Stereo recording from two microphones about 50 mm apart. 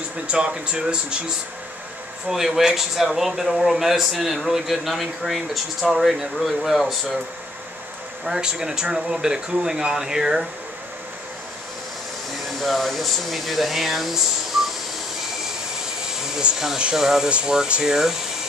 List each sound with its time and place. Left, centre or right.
0.3 s speech: right
2.2 s speech: centre
8.3 s speech: centre
12.5 s speech: centre
14.5 s a sound: centre
16.9 s speech: centre